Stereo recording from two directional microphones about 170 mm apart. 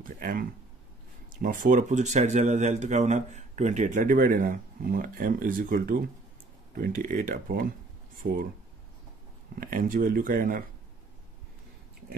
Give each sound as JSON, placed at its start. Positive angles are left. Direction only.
{"t": 0.0, "sound": "speech", "side_deg": -55}
{"t": 9.6, "sound": "speech", "side_deg": -55}